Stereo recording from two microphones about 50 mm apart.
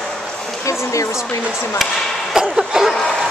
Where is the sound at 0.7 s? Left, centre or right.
Left.